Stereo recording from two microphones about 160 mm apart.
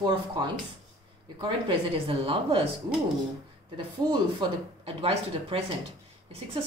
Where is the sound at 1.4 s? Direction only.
30° right (ahead or behind).